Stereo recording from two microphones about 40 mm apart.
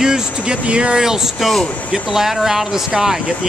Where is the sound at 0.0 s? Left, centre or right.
Centre.